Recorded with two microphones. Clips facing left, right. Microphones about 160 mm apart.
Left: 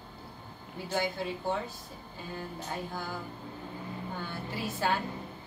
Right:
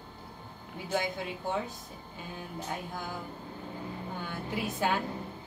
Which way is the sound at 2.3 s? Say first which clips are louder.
Left 1 dB; 15° right (ahead or behind).